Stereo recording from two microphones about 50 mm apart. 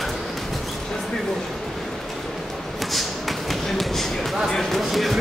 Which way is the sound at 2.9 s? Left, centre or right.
Centre.